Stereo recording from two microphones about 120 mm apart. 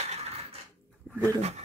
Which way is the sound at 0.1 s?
65° right (ahead or behind).